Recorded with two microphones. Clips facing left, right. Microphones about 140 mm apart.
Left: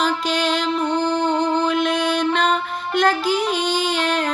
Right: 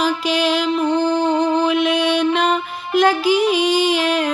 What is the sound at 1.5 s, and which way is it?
Music, 5° right (ahead or behind).